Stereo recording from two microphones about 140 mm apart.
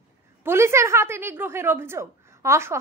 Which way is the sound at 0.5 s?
20° right (ahead or behind).